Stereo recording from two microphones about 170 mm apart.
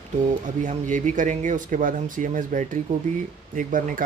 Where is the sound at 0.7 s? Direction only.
45° right (ahead or behind).